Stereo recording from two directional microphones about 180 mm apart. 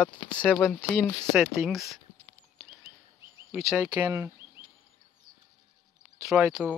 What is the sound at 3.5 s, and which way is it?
Speech, 15° right (ahead or behind).